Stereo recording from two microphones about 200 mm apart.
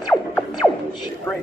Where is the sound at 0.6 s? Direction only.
15° left (ahead or behind).